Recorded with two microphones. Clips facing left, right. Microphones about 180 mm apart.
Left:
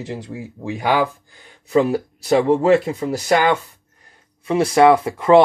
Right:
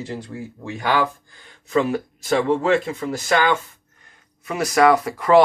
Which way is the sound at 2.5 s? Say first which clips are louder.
Left 4 dB; 35° left (ahead or behind).